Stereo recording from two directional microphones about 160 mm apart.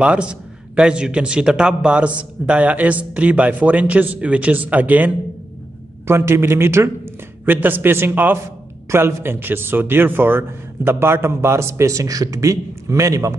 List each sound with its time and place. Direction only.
0.0 s a man's voice: 5° right (ahead or behind)